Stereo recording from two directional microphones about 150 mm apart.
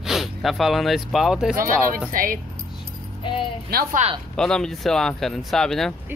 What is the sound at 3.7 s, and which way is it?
Speech, 90° right.